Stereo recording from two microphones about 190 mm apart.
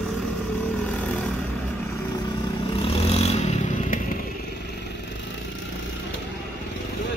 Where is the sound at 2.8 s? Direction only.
30° left (ahead or behind).